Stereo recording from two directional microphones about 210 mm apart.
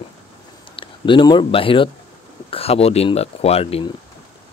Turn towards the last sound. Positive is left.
turn(degrees=25)  # may be behind; listen again after turning